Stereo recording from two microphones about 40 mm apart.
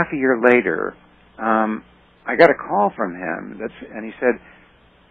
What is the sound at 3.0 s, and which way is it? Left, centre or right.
Speech, right.